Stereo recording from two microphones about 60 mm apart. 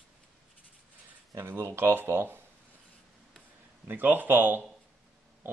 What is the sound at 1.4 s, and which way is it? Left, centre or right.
Speech, right.